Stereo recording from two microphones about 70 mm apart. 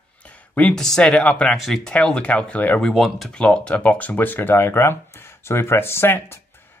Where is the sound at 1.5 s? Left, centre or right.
Centre.